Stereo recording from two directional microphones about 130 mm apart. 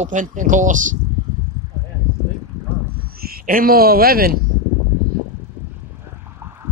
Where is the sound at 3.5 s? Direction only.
90° right.